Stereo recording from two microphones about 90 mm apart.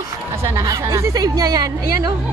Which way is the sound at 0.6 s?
40° right (ahead or behind).